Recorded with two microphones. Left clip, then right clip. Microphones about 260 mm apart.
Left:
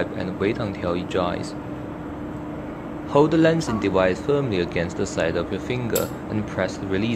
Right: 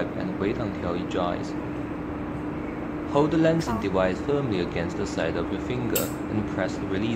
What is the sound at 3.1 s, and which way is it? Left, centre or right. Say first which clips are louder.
Speech: left 4 dB; left.